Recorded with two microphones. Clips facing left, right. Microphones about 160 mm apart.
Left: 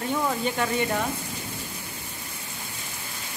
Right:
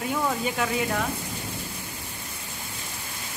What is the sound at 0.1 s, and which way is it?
Speech, centre (ahead or behind).